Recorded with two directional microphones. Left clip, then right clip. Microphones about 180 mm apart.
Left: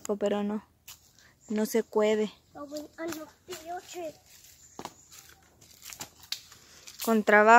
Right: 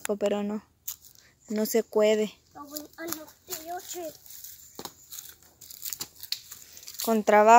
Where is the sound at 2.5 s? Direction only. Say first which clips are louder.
Left 2 dB; 45° right (ahead or behind).